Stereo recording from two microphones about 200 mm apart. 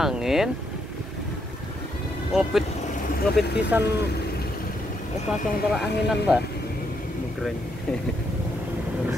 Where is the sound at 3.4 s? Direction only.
10° right (ahead or behind).